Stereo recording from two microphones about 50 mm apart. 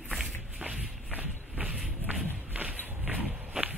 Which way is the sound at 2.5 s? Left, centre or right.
Right.